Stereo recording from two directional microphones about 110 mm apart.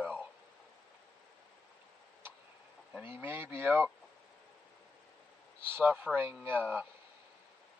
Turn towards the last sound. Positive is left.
turn(degrees=-15)  # may be behind; listen again after turning